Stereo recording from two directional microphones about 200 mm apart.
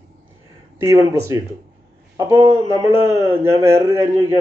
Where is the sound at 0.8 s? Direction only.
15° right (ahead or behind).